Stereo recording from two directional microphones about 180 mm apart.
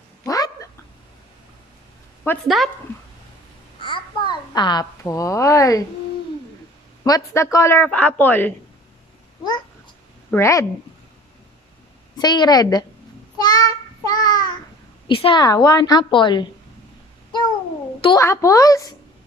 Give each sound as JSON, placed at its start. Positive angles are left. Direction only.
{"t": 0.2, "sound": "cat", "side_deg": 20}
{"t": 2.4, "sound": "speech", "side_deg": 0}
{"t": 3.8, "sound": "a sound", "side_deg": 25}
{"t": 7.0, "sound": "speech", "side_deg": 20}
{"t": 10.3, "sound": "speech", "side_deg": 15}
{"t": 12.2, "sound": "a woman's voice", "side_deg": 25}
{"t": 13.4, "sound": "child singing", "side_deg": 20}
{"t": 15.0, "sound": "a woman's voice", "side_deg": 30}
{"t": 18.0, "sound": "a woman's voice", "side_deg": 20}